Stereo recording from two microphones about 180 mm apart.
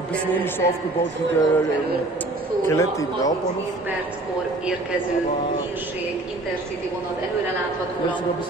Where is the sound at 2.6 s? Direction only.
15° left (ahead or behind).